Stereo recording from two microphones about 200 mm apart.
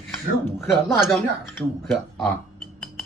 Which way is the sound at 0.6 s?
Centre (ahead or behind).